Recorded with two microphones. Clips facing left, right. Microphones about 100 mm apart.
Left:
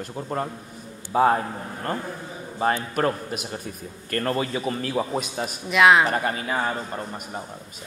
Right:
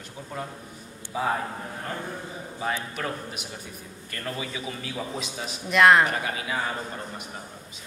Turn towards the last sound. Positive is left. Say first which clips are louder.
# left 4 dB
turn(degrees=40)  # may be behind; listen again after turning